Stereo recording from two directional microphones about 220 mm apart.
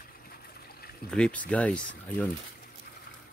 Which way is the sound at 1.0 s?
5° left (ahead or behind).